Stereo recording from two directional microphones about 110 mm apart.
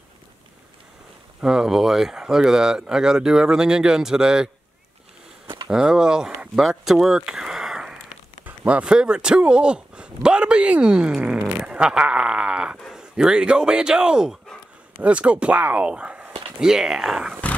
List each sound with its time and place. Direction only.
1.4 s speech: 5° right (ahead or behind)
5.7 s speech: 5° right (ahead or behind)